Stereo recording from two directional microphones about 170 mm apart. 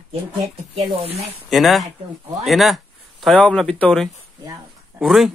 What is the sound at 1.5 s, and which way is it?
Speech, centre (ahead or behind).